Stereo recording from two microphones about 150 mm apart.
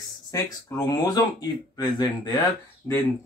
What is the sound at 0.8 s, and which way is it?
Speech, 25° left (ahead or behind).